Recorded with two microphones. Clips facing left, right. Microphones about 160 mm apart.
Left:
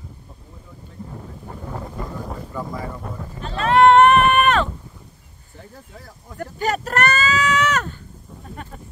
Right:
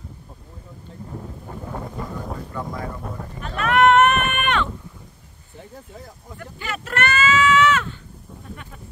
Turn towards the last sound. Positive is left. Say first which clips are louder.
# right 3 dB
turn(degrees=40)  # may be behind; listen again after turning